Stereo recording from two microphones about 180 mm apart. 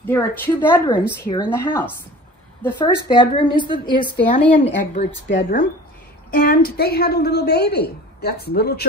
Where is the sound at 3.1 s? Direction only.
25° left (ahead or behind).